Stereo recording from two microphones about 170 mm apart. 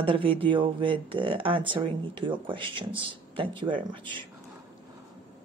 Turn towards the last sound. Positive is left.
turn(degrees=-30)  # may be behind; listen again after turning